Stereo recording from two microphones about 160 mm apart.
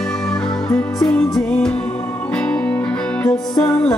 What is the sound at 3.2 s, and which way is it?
Music, 20° left (ahead or behind).